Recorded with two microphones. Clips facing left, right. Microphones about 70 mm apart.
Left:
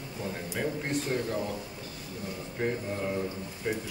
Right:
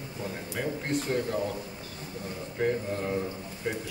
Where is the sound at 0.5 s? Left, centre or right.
Centre.